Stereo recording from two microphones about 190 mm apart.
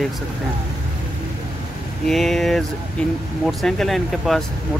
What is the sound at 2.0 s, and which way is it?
Speech, centre (ahead or behind).